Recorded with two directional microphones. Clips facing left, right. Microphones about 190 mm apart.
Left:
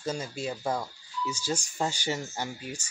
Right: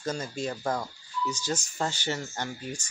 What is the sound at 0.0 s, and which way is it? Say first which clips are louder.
Speech: right 1 dB; 10° left (ahead or behind).